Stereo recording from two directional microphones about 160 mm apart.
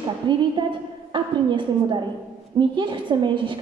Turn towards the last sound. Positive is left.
turn(degrees=-30)  # may be behind; listen again after turning